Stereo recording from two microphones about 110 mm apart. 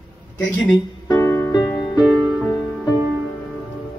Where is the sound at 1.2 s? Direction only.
25° left (ahead or behind).